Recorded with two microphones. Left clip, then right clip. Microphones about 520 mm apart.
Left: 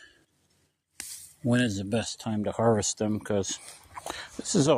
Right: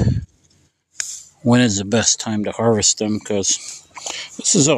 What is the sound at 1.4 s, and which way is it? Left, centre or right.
Speech, left.